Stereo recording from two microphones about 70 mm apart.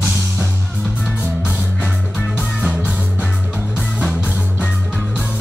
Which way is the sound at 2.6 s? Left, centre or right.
Centre.